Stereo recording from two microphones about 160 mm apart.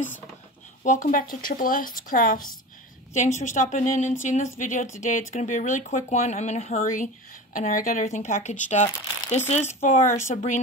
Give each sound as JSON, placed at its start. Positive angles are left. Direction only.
{"t": 0.8, "sound": "speech", "side_deg": 55}